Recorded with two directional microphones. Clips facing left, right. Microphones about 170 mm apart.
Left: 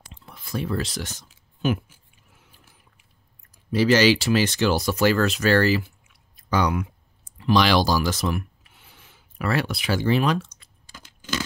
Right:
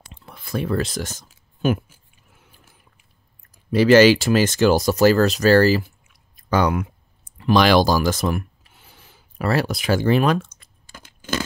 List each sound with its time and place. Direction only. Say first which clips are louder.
0.0 s a sound: right 3 dB; 60° right (ahead or behind)
3.5 s speech: right 6 dB; 55° right (ahead or behind)
7.3 s writing: right 4 dB; 55° right (ahead or behind)